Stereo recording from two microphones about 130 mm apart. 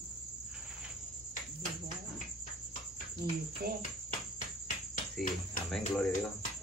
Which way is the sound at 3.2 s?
25° right (ahead or behind).